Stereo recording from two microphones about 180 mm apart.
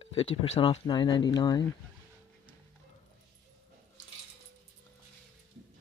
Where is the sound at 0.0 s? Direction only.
30° left (ahead or behind).